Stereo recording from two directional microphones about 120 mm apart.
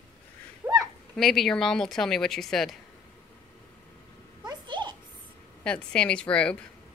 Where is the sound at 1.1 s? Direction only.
Centre (ahead or behind).